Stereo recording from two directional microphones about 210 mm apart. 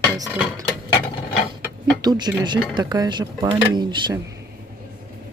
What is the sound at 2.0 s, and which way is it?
Speech, 20° right (ahead or behind).